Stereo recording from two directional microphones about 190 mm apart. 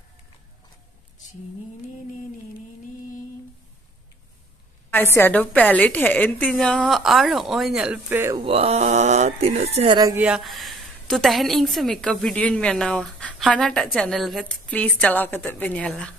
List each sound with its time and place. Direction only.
4.9 s a woman's voice: 10° left (ahead or behind); by 8.4 s 10° right (ahead or behind)
8.4 s speech: 30° right (ahead or behind)
10.1 s a woman's voice: 5° right (ahead or behind)